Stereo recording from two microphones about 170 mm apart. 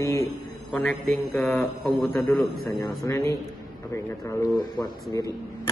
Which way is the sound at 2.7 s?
20° left (ahead or behind).